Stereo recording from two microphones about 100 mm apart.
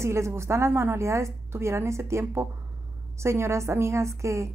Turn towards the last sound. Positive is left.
turn(degrees=-30)  # may be behind; listen again after turning